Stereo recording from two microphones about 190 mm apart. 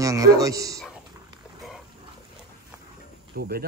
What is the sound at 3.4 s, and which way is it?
Speech, 55° right (ahead or behind).